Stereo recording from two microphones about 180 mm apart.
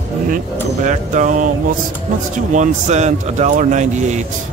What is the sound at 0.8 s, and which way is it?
A man's voice, 45° right (ahead or behind).